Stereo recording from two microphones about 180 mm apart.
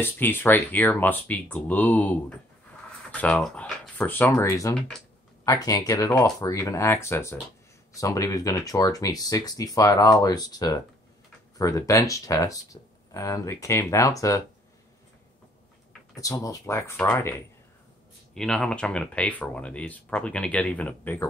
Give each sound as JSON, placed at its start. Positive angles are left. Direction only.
{"t": 0.0, "sound": "speech", "side_deg": 10}
{"t": 16.2, "sound": "speech", "side_deg": 20}
{"t": 18.3, "sound": "speech", "side_deg": 5}